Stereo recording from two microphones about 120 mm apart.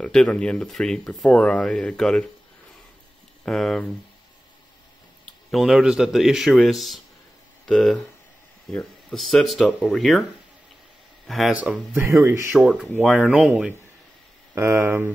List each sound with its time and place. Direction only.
0.0 s speech: 5° left (ahead or behind)
3.4 s speech: 5° left (ahead or behind)
5.2 s speech: centre (ahead or behind)
11.2 s speech: centre (ahead or behind)
11.5 s speech: 10° right (ahead or behind)
12.1 s speech: 25° right (ahead or behind)
12.5 s speech: centre (ahead or behind)
14.5 s speech: 20° right (ahead or behind)